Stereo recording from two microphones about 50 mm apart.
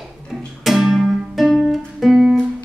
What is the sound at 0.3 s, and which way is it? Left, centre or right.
Music, centre.